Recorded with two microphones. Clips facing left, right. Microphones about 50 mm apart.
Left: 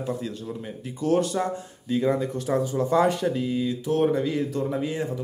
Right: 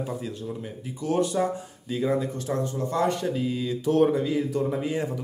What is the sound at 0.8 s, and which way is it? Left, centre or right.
Speech, centre.